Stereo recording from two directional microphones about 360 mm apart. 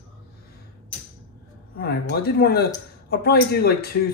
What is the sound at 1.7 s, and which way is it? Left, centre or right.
Speech, left.